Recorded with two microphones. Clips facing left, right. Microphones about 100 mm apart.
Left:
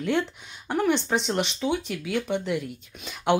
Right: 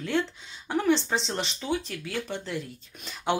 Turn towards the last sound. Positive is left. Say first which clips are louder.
# left 4 dB
turn(degrees=5)  # may be behind; listen again after turning